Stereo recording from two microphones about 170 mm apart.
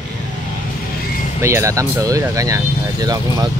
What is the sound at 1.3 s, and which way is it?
Speech, 15° right (ahead or behind).